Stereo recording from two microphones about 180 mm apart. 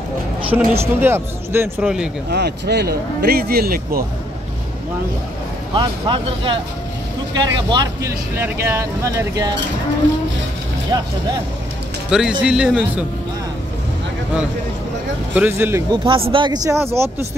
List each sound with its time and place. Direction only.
0.5 s speech: 15° right (ahead or behind)
2.3 s speech: 65° right (ahead or behind)
5.8 s speech: 30° right (ahead or behind)
10.9 s speech: 20° right (ahead or behind)
12.1 s speech: 5° right (ahead or behind)
15.3 s speech: 10° right (ahead or behind)
15.9 s speech: 25° right (ahead or behind)